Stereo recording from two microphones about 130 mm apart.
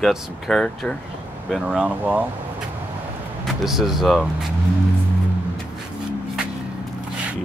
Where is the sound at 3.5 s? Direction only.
Centre (ahead or behind).